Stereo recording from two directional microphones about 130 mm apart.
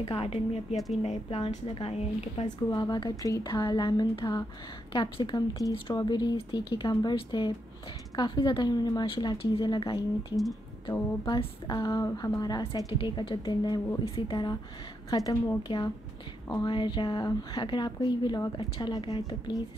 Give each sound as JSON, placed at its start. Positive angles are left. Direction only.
{"t": 0.0, "sound": "a woman's voice", "side_deg": 45}
{"t": 2.4, "sound": "a woman's voice", "side_deg": 35}